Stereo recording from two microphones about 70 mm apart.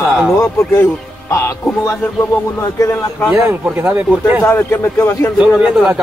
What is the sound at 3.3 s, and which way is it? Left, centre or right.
Speech, right.